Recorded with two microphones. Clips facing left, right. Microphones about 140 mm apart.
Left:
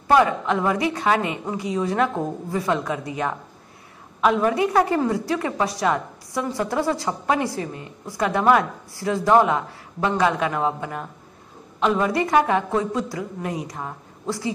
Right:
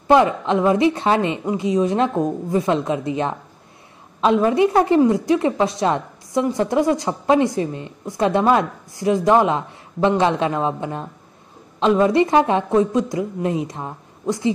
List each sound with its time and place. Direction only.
0.1 s a woman's voice: 20° right (ahead or behind)